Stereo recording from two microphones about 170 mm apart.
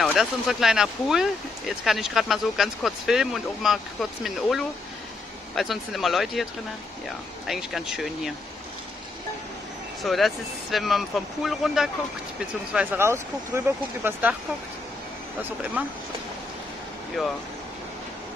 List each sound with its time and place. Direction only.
0.0 s speech: centre (ahead or behind)
7.4 s speech: centre (ahead or behind)
10.0 s speech: centre (ahead or behind)
12.7 s speech: 15° right (ahead or behind)